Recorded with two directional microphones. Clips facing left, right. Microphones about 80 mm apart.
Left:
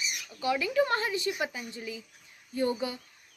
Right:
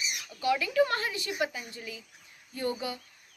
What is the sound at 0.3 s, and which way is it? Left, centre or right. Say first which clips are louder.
A woman's voice: right 1 dB; left.